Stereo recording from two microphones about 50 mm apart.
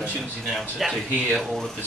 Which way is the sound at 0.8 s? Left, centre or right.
Centre.